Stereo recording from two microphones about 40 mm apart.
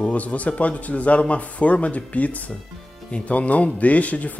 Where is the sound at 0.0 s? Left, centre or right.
Left.